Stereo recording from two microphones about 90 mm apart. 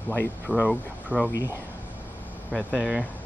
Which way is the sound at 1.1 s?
20° right (ahead or behind).